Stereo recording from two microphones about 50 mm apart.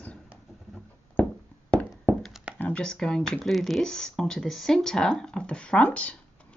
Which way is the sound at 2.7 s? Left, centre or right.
Centre.